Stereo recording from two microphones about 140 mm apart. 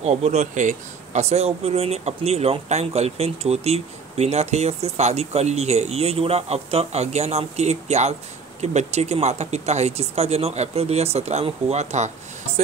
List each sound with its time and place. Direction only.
0.0 s speech: 50° right (ahead or behind)